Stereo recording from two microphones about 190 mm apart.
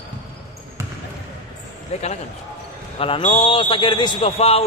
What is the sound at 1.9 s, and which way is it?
A man's voice, 35° left (ahead or behind).